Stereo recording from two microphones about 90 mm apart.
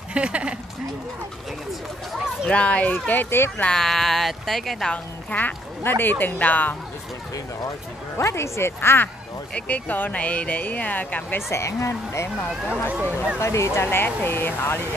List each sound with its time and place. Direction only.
0.1 s speech: 15° right (ahead or behind)
2.4 s speech: 15° left (ahead or behind)
3.6 s speech: 5° left (ahead or behind)
4.9 s speech: 20° left (ahead or behind)
8.2 s speech: 30° left (ahead or behind)
11.3 s speech: 30° left (ahead or behind)
12.9 s speech: 10° right (ahead or behind)
13.4 s speech: 35° left (ahead or behind)